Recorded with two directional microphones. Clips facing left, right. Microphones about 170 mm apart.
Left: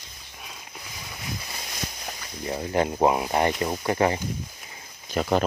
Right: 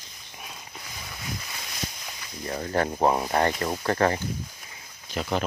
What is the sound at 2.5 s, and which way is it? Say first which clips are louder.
Speech: left 2 dB; 15° left (ahead or behind).